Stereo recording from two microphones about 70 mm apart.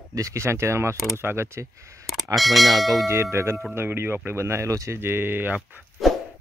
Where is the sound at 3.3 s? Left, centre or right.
Right.